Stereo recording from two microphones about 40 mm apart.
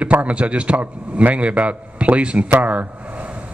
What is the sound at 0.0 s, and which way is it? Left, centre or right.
A man's voice, right.